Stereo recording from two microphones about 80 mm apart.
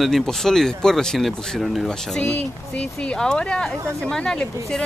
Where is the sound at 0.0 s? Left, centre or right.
Centre.